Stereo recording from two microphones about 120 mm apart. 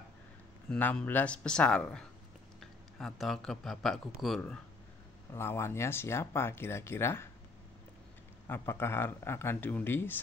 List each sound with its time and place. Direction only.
0.7 s speech: 15° left (ahead or behind)
5.3 s speech: 20° left (ahead or behind)
8.5 s speech: 20° left (ahead or behind)